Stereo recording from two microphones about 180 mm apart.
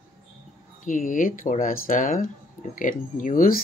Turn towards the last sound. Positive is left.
turn(degrees=50)  # may be behind; listen again after turning